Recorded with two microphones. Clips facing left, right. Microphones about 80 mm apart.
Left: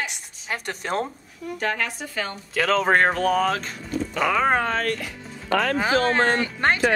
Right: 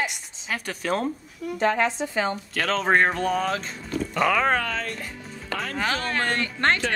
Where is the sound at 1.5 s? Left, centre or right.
Right.